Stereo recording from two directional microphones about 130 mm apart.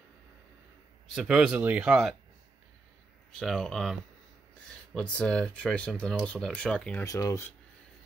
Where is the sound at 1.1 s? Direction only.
5° right (ahead or behind).